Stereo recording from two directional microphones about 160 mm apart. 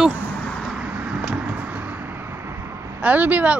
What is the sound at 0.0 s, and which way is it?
Vehicle, centre (ahead or behind).